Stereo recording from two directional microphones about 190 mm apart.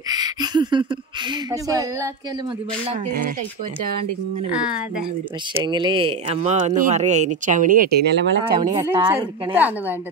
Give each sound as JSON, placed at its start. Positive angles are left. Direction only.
{"t": 0.1, "sound": "a sound", "side_deg": -20}
{"t": 1.5, "sound": "speech", "side_deg": -15}
{"t": 5.5, "sound": "speech", "side_deg": -25}
{"t": 8.6, "sound": "speech", "side_deg": -15}